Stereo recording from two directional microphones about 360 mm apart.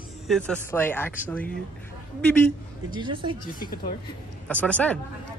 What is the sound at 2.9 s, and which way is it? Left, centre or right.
Speech, centre.